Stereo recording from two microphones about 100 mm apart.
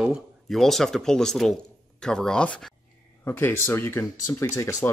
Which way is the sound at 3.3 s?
20° left (ahead or behind).